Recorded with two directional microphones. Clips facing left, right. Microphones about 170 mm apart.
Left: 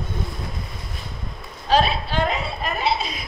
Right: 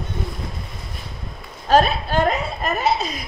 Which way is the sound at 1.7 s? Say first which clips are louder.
Right 3 dB; 45° right (ahead or behind).